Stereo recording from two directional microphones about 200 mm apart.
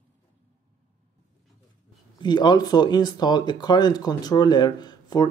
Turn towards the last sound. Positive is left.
turn(degrees=20)  # may be behind; listen again after turning